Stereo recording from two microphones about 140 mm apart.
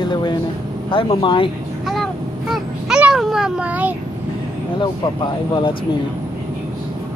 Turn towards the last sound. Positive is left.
turn(degrees=35)  # may be behind; listen again after turning